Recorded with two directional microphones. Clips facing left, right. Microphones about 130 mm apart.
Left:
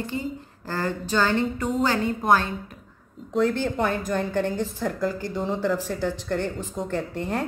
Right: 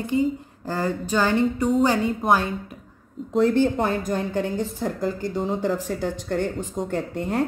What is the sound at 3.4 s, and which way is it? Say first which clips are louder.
Speech: right 4 dB; 35° right (ahead or behind).